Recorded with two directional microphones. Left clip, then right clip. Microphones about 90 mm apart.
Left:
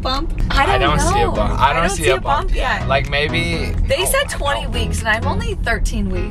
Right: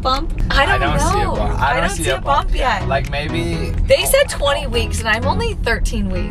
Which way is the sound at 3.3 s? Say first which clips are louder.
Left 2 dB; 15° left (ahead or behind).